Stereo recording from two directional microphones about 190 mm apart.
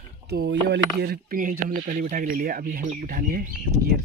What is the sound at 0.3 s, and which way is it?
Speech, 60° right (ahead or behind).